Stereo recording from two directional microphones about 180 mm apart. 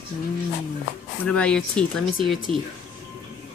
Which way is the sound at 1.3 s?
5° left (ahead or behind).